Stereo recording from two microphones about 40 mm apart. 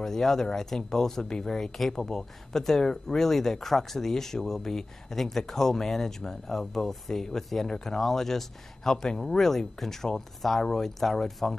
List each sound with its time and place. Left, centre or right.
0.0 s speech: centre
2.9 s speech: centre
3.3 s speech: centre